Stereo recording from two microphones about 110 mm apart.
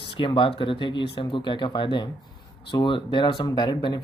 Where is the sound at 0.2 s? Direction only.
50° left (ahead or behind).